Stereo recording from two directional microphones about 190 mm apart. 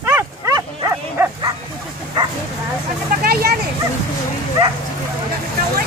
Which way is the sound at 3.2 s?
55° right (ahead or behind).